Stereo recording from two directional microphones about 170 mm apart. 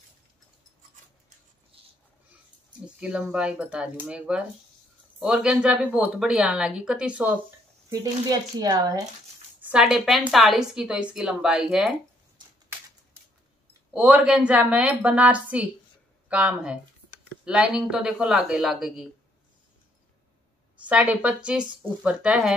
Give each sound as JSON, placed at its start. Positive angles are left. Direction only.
{"t": 1.7, "sound": "a sound", "side_deg": -35}
{"t": 3.0, "sound": "a woman's voice", "side_deg": -5}
{"t": 7.9, "sound": "speech", "side_deg": -20}
{"t": 9.7, "sound": "a woman's voice", "side_deg": -5}
{"t": 12.4, "sound": "a sound", "side_deg": -25}
{"t": 13.9, "sound": "a woman's voice", "side_deg": -5}
{"t": 20.8, "sound": "a woman's voice", "side_deg": -5}